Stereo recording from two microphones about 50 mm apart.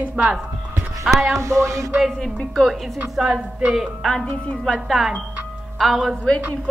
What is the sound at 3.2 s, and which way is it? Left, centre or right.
Speech, right.